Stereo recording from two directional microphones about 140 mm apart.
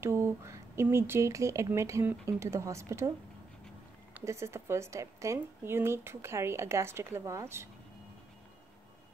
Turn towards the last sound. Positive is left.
turn(degrees=-20)  # may be behind; listen again after turning